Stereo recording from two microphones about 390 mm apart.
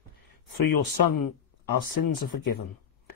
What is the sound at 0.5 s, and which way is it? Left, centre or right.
Speech, left.